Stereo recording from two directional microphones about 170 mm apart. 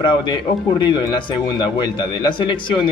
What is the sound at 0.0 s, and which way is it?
Speech, 25° left (ahead or behind).